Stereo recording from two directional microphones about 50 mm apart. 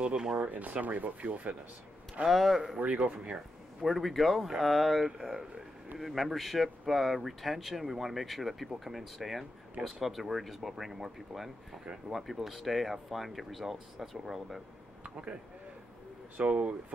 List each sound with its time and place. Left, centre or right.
0.0 s speech: centre
0.4 s speech: right
2.2 s speech: centre
2.8 s speech: right
3.8 s speech: centre
5.0 s speech: centre
15.0 s speech: right
16.3 s speech: right